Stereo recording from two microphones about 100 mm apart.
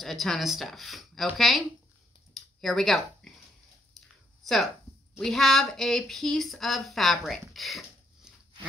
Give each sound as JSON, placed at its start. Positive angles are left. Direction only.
{"t": 0.0, "sound": "speech", "side_deg": 0}
{"t": 2.3, "sound": "a sound", "side_deg": 0}
{"t": 5.2, "sound": "speech", "side_deg": 5}